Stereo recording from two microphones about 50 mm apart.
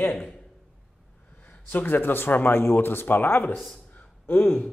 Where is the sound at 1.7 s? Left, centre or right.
Left.